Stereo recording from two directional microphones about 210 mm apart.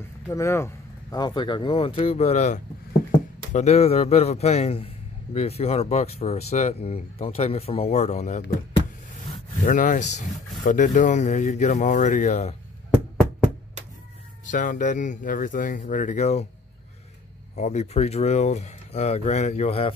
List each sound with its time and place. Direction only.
0.3 s a man's voice: 15° left (ahead or behind); by 8.5 s 35° left (ahead or behind)
9.7 s speech: 40° left (ahead or behind)
14.5 s speech: 40° left (ahead or behind)
17.6 s speech: 35° left (ahead or behind)